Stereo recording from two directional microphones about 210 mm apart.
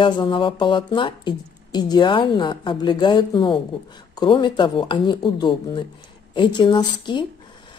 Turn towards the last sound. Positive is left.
turn(degrees=20)  # may be behind; listen again after turning